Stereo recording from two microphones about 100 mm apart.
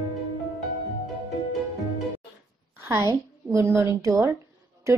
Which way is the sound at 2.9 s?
30° right (ahead or behind).